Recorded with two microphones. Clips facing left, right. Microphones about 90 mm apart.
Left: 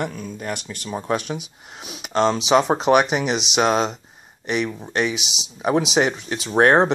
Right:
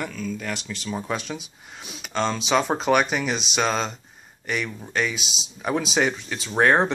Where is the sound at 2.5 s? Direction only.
30° left (ahead or behind).